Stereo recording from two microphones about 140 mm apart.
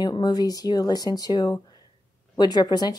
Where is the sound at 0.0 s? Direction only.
30° left (ahead or behind).